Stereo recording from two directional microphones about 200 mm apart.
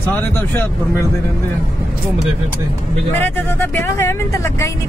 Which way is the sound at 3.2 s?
10° left (ahead or behind).